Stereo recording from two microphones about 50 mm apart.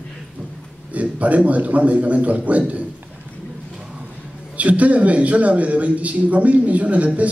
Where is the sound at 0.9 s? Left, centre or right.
Right.